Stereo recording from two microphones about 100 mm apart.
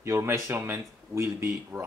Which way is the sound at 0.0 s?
30° right (ahead or behind).